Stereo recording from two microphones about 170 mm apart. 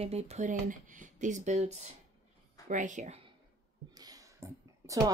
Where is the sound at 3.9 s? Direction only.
20° right (ahead or behind).